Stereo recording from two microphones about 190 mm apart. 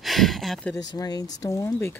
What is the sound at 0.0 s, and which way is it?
Speech, centre (ahead or behind).